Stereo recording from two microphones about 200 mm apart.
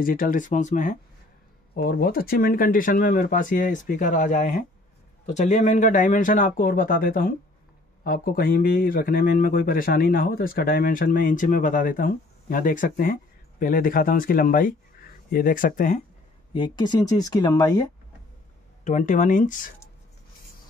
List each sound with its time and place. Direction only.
0.0 s a man's voice: 45° left (ahead or behind)
16.5 s speech: 25° left (ahead or behind)
18.9 s a man's voice: 40° left (ahead or behind)